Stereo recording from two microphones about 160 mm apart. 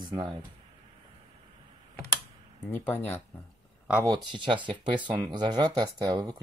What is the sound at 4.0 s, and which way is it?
Speech, 30° right (ahead or behind).